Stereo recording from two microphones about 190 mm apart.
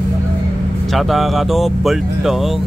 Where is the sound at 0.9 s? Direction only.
Centre (ahead or behind).